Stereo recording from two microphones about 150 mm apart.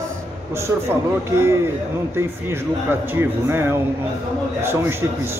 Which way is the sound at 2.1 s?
15° right (ahead or behind).